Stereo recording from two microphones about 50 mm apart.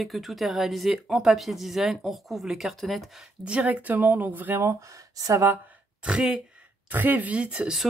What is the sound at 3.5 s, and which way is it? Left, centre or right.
Speech, right.